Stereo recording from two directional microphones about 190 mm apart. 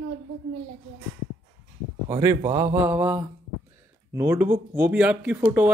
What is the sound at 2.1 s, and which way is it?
Speech, 15° right (ahead or behind).